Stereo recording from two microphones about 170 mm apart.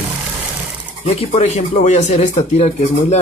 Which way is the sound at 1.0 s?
40° left (ahead or behind).